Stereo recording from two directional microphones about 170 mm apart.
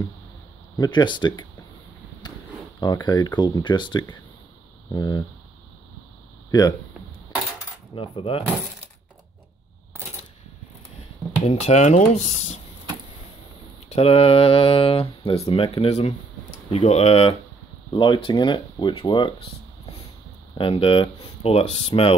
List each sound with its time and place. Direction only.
0.7 s speech: 25° left (ahead or behind)
2.2 s a sound: 25° left (ahead or behind)
2.8 s speech: 25° left (ahead or behind)
7.9 s speech: 30° left (ahead or behind)
11.4 s speech: 40° left (ahead or behind)
13.8 s speech: 35° left (ahead or behind)
20.5 s speech: 30° left (ahead or behind)